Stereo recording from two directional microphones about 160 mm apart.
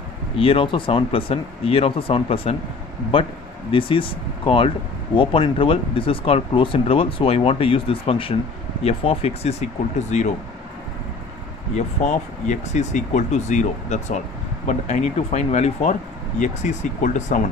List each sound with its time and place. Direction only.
0.4 s speech: 35° left (ahead or behind)
11.7 s speech: 50° left (ahead or behind)